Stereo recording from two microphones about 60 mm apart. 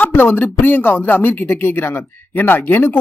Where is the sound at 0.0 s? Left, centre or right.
Left.